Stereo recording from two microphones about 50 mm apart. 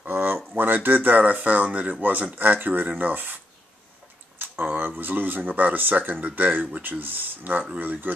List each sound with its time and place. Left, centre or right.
0.0 s a sound: right
0.6 s speech: right
4.4 s speech: right